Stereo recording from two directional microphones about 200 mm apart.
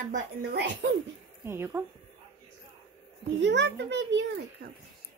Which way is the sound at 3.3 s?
65° right (ahead or behind).